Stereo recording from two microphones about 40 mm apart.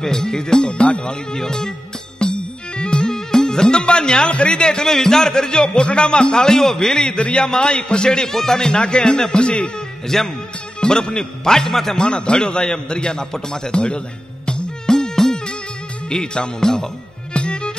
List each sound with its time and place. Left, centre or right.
0.0 s speech: centre
2.1 s music: left
7.2 s a man's voice: left
10.0 s speech: centre
10.8 s speech: left
12.0 s a man's voice: left
17.3 s music: left